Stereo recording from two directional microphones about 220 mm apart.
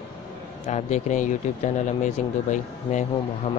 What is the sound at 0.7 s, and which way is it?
Speech, 30° left (ahead or behind).